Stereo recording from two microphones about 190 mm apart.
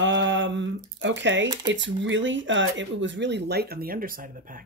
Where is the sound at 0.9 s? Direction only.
70° right (ahead or behind).